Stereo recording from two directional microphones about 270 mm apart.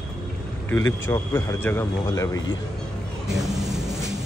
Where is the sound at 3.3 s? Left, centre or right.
Centre.